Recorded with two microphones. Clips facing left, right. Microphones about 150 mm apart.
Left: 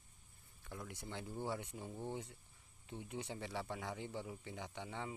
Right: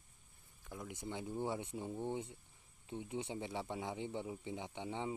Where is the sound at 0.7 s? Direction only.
5° right (ahead or behind).